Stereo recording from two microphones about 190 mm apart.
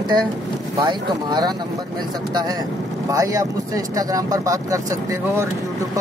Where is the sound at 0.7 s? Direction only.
20° right (ahead or behind).